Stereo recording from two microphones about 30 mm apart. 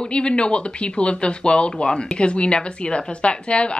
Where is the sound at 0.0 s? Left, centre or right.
Left.